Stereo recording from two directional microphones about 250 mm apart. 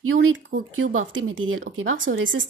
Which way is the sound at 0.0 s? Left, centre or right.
Right.